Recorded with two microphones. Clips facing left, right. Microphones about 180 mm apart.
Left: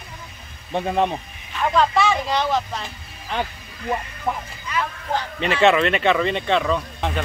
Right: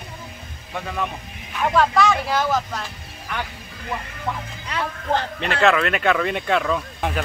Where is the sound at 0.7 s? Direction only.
25° left (ahead or behind).